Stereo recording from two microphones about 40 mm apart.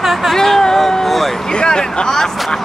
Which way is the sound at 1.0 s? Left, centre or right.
Centre.